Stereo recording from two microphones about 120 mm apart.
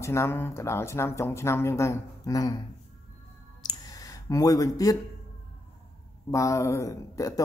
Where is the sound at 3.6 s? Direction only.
30° left (ahead or behind).